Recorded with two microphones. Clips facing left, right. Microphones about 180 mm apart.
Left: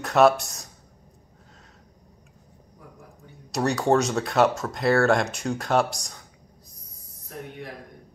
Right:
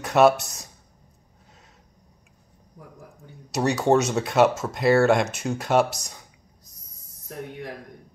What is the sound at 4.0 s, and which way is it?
Speech, 5° right (ahead or behind).